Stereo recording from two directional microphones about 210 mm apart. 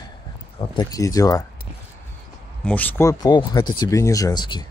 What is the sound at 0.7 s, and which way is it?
Speech, 15° left (ahead or behind).